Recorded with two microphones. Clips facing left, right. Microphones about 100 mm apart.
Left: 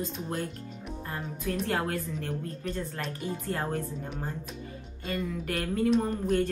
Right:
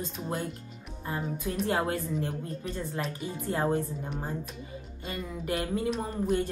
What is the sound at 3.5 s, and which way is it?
Speech, 15° right (ahead or behind).